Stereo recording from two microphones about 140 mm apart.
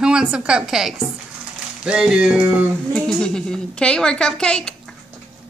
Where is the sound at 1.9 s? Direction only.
5° right (ahead or behind).